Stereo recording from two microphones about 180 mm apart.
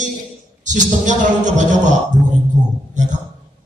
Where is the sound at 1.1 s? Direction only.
40° right (ahead or behind).